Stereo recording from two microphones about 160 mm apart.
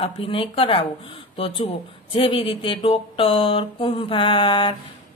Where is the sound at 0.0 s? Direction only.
35° left (ahead or behind).